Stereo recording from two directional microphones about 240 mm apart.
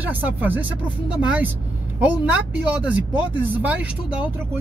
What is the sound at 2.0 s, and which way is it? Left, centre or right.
Speech, centre.